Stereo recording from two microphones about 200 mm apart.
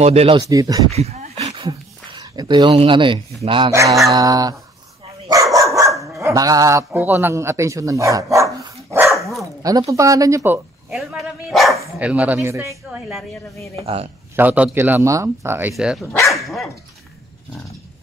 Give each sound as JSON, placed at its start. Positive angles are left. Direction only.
{"t": 0.0, "sound": "speech", "side_deg": -30}
{"t": 0.5, "sound": "speech", "side_deg": -20}
{"t": 0.9, "sound": "a sound", "side_deg": -30}
{"t": 3.4, "sound": "speech", "side_deg": -25}
{"t": 5.3, "sound": "dog", "side_deg": -15}
{"t": 6.1, "sound": "a man's voice", "side_deg": -15}
{"t": 13.7, "sound": "speech", "side_deg": -30}
{"t": 14.3, "sound": "speech", "side_deg": -10}
{"t": 16.3, "sound": "dog", "side_deg": 0}